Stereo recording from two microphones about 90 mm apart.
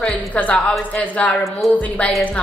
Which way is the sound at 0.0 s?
15° left (ahead or behind).